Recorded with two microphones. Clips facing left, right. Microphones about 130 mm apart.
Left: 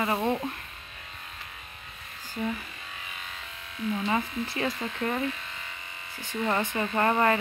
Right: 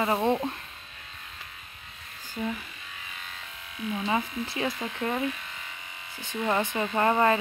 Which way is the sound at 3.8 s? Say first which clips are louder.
Even; 10° right (ahead or behind).